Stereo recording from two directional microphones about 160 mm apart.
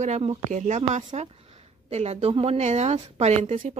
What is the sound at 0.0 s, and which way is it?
A woman's voice, 45° right (ahead or behind).